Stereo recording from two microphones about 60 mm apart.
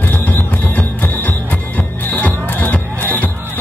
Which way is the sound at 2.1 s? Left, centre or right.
Left.